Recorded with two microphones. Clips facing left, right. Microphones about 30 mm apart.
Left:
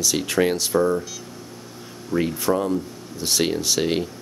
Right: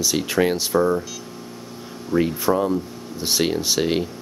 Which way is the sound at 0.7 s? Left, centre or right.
Right.